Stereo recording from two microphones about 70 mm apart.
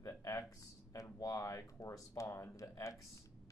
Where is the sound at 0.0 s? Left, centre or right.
Left.